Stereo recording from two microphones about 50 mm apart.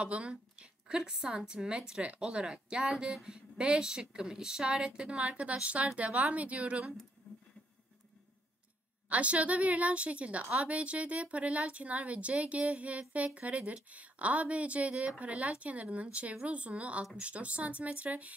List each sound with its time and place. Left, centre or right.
0.0 s a woman's voice: right
7.3 s a sound: left
9.1 s a woman's voice: right